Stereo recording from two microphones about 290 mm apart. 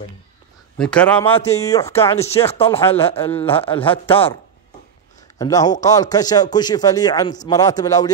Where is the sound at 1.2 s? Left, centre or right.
Centre.